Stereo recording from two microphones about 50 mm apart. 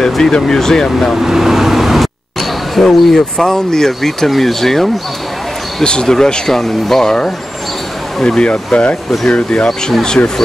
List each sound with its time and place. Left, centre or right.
0.0 s speech: centre
1.1 s vehicle: centre
2.7 s speech: centre
9.3 s speech: left
9.7 s speech: centre